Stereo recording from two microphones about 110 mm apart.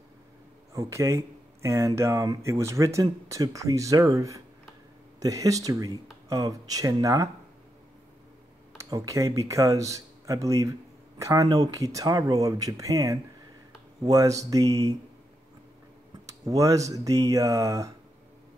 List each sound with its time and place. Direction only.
0.7 s speech: 30° right (ahead or behind)
8.9 s speech: 30° right (ahead or behind)
16.3 s speech: 30° right (ahead or behind)